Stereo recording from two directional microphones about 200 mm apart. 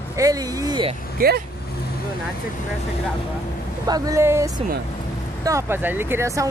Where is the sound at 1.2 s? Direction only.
50° right (ahead or behind).